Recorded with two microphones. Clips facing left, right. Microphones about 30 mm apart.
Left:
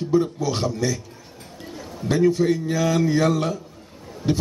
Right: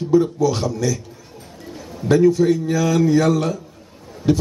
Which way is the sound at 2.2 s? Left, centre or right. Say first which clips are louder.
Right 4 dB; left.